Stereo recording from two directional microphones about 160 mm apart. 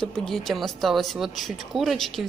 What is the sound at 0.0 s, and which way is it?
A woman's voice, 5° left (ahead or behind).